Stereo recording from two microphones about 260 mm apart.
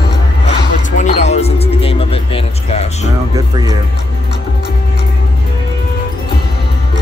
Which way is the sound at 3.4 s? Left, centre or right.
Centre.